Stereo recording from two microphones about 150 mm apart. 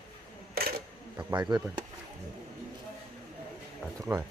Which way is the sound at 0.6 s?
90° right.